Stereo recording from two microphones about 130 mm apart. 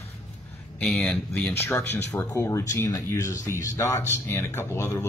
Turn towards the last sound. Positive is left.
turn(degrees=20)  # may be behind; listen again after turning